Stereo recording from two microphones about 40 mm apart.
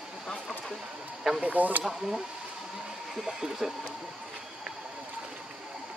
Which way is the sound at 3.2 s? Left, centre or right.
Centre.